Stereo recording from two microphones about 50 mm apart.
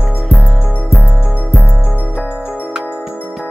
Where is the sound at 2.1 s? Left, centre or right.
Right.